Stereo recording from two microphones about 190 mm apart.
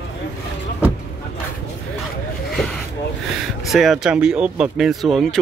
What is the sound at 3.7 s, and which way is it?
Speech, centre (ahead or behind).